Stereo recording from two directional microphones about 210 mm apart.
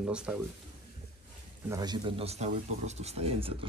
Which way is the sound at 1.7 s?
20° right (ahead or behind).